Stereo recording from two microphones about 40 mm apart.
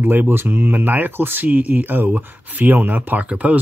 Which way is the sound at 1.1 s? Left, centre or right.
Right.